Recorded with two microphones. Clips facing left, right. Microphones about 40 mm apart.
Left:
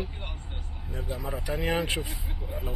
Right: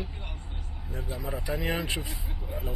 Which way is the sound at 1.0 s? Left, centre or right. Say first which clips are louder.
Left 2 dB; left.